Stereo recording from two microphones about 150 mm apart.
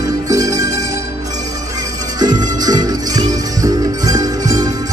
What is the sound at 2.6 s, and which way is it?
Music, 25° right (ahead or behind).